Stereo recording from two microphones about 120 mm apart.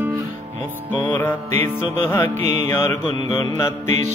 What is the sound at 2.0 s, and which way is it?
Mantra, 25° left (ahead or behind).